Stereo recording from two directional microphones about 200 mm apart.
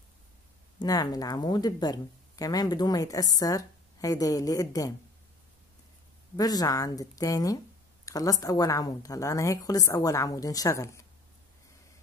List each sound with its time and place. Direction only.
0.7 s speech: 20° left (ahead or behind)
6.3 s speech: 20° left (ahead or behind)